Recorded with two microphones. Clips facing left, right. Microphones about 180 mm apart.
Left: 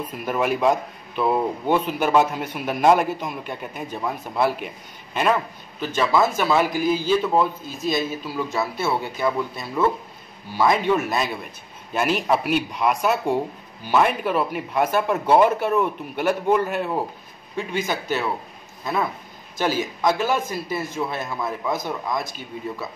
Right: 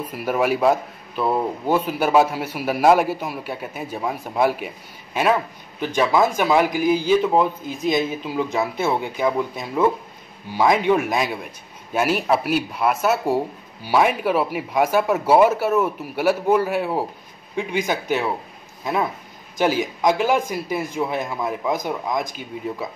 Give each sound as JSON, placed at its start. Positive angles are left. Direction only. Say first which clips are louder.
{"t": 0.0, "sound": "a man's voice", "louder": "right 2 dB", "side_deg": -10}
{"t": 19.6, "sound": "speech", "louder": "right 3 dB", "side_deg": -15}